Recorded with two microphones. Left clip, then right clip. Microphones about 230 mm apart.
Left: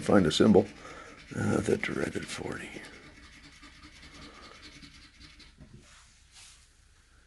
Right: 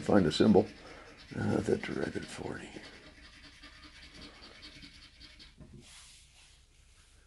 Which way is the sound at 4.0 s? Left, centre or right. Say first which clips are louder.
Left 4 dB; centre.